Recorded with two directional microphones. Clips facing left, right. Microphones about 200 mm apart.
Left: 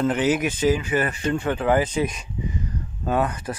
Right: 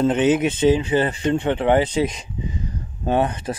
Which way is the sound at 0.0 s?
25° right (ahead or behind).